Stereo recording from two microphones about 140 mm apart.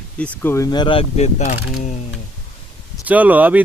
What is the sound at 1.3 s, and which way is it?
Speech, 60° left (ahead or behind).